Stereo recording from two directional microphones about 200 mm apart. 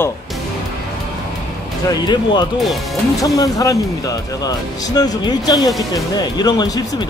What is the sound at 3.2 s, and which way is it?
Speech, 15° left (ahead or behind).